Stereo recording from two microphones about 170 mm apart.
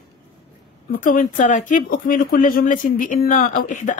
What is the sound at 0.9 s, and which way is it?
Speech, 55° left (ahead or behind).